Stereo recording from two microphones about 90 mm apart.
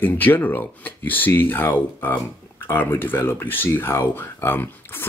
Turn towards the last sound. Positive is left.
turn(degrees=25)  # may be behind; listen again after turning